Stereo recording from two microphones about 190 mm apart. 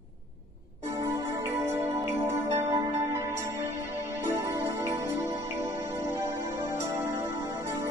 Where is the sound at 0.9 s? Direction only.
20° right (ahead or behind).